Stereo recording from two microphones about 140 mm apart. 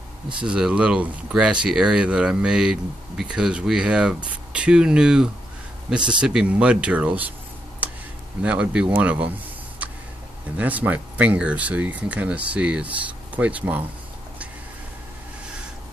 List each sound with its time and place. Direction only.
0.4 s speech: 5° right (ahead or behind)
5.9 s speech: 35° right (ahead or behind)
6.2 s speech: 5° right (ahead or behind)
7.8 s a sound: 10° right (ahead or behind)
8.4 s speech: 10° right (ahead or behind)
9.8 s a sound: 10° right (ahead or behind)
10.6 s speech: 10° right (ahead or behind)